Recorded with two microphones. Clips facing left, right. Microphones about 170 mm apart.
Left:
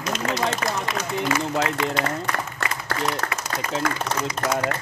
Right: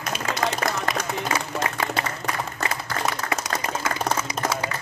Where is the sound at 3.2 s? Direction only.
60° left (ahead or behind).